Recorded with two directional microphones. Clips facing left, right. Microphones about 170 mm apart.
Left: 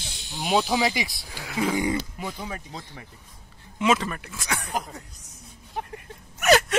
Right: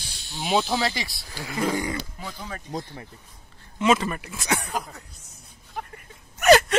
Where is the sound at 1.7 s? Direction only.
20° left (ahead or behind).